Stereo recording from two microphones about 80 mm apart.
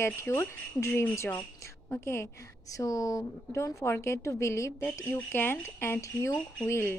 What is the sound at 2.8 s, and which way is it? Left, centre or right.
Speech, left.